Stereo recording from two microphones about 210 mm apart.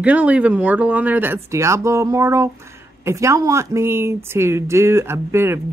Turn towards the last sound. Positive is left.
turn(degrees=-10)  # may be behind; listen again after turning